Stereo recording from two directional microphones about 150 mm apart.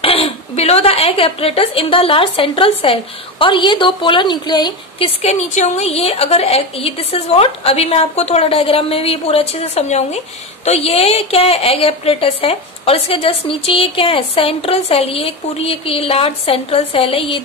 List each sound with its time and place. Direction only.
0.0 s a woman's voice: 40° left (ahead or behind)